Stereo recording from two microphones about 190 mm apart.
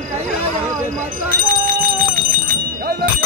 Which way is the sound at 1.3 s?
50° right (ahead or behind).